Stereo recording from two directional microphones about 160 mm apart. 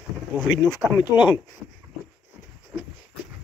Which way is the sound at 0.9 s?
25° left (ahead or behind).